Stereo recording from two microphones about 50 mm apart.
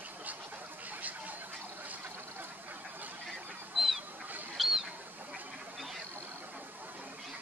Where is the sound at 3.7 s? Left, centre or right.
Centre.